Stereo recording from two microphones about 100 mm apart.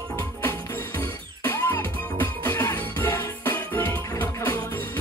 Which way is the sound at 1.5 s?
20° left (ahead or behind).